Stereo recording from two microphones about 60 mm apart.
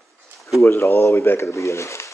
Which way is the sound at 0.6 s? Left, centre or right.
Left.